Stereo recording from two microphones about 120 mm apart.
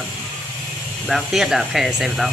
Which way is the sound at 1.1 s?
Centre (ahead or behind).